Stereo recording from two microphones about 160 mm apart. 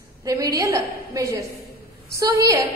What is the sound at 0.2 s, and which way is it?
A woman's voice, 20° right (ahead or behind).